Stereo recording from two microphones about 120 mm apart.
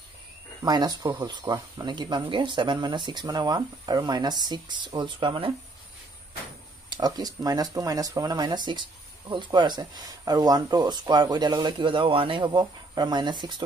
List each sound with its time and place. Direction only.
0.7 s speech: 35° right (ahead or behind)
6.9 s speech: 35° right (ahead or behind)